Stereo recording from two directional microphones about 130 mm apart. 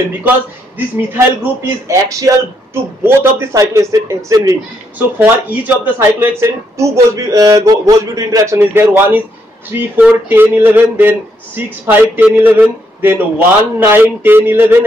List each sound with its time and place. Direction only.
0.7 s a man's voice: 15° right (ahead or behind)
8.5 s a man's voice: 15° right (ahead or behind)